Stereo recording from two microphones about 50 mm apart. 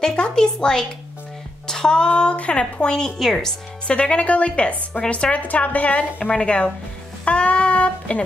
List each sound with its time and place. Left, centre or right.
0.0 s speech: centre